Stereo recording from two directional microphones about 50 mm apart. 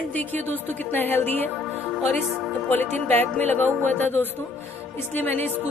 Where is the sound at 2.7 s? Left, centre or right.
Left.